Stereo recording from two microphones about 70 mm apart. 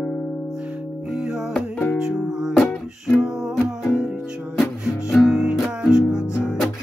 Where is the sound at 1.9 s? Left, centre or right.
Centre.